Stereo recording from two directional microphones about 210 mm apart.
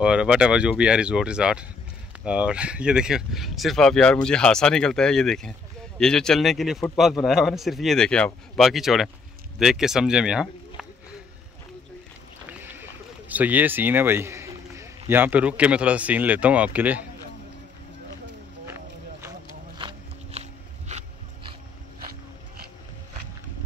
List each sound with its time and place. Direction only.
0.0 s speech: 5° right (ahead or behind)
12.4 s boat: 10° right (ahead or behind)
13.3 s speech: 5° right (ahead or behind)
19.8 s walk: 25° right (ahead or behind)
20.9 s dog: 25° right (ahead or behind)